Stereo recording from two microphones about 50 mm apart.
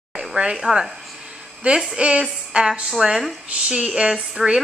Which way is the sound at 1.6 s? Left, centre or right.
Right.